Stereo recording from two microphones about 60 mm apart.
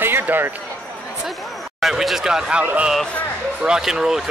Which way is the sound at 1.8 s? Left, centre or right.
Centre.